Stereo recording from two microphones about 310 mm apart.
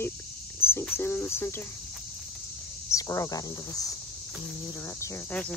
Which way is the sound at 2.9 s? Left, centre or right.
Centre.